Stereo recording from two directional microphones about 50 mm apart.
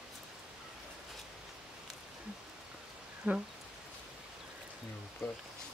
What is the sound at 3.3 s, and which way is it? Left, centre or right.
Speech, right.